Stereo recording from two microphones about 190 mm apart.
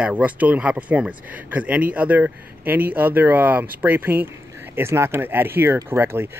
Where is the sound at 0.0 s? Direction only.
10° right (ahead or behind).